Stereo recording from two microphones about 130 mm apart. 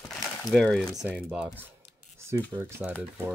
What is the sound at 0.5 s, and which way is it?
Speech, 5° left (ahead or behind).